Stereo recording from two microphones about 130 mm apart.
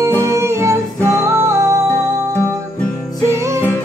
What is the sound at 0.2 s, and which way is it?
Music, 20° right (ahead or behind).